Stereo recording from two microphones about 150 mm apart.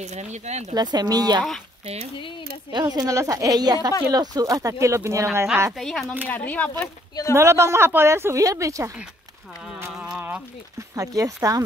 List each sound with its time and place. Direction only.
0.0 s speech: 50° right (ahead or behind)
0.7 s speech: 25° right (ahead or behind)
2.1 s speech: 35° left (ahead or behind)
2.7 s speech: 25° right (ahead or behind)
5.8 s speech: centre (ahead or behind)
7.3 s speech: 20° right (ahead or behind)
10.1 s a sound: 10° right (ahead or behind)
11.0 s speech: 20° right (ahead or behind)